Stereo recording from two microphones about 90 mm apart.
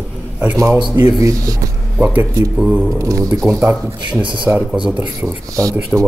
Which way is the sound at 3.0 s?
40° right (ahead or behind).